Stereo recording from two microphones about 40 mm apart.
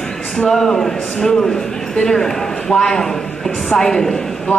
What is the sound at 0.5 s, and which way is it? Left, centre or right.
A woman's voice, centre.